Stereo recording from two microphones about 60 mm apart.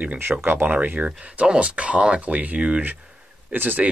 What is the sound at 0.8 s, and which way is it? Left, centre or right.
Speech, right.